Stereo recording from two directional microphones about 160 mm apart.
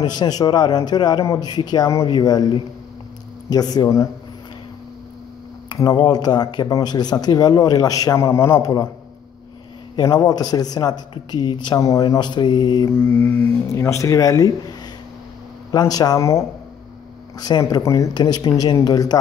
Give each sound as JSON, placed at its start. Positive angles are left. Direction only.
{"t": 0.0, "sound": "speech", "side_deg": 25}
{"t": 5.7, "sound": "speech", "side_deg": 25}
{"t": 9.9, "sound": "speech", "side_deg": 20}
{"t": 12.9, "sound": "speech", "side_deg": 15}